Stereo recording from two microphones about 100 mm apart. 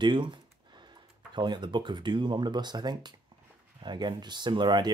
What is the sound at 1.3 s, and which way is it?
Speech, 50° right (ahead or behind).